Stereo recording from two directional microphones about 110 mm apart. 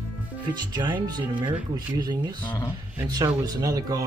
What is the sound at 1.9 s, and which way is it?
Speech, 40° right (ahead or behind).